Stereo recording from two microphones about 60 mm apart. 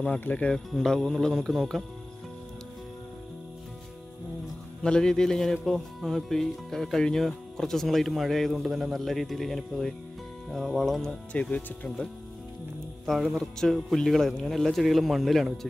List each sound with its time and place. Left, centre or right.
0.2 s speech: left
0.7 s speech: centre
1.5 s speech: centre
4.8 s speech: centre
11.3 s speech: left
13.0 s speech: centre